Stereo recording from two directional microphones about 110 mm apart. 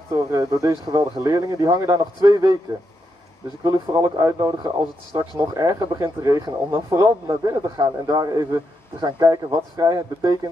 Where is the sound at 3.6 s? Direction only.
35° right (ahead or behind).